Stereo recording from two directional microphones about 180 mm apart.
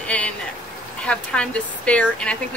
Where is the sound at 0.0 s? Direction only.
5° left (ahead or behind).